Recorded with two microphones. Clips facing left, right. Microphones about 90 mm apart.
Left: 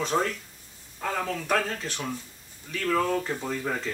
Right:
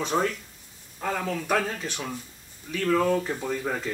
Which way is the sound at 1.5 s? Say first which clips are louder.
Right 1 dB; 10° right (ahead or behind).